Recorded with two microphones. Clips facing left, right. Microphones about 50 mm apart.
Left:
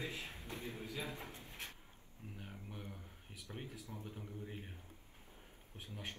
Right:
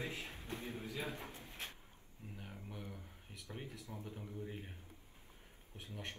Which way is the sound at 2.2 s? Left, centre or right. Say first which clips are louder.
Even; left.